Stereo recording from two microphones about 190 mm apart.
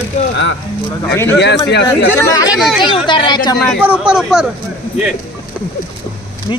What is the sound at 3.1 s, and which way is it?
Speech, 25° left (ahead or behind).